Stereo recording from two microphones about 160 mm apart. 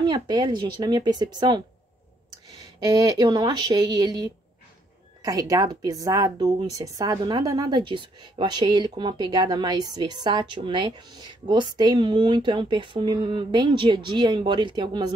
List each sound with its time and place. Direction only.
0.0 s speech: 25° right (ahead or behind)